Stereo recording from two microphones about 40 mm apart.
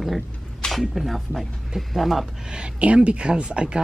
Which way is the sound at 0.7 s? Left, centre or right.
Centre.